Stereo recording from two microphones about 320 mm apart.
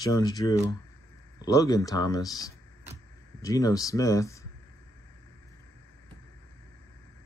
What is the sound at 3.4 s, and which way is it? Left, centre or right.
Speech, centre.